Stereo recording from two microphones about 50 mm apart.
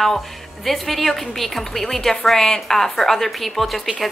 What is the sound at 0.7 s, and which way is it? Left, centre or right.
A woman's voice, centre.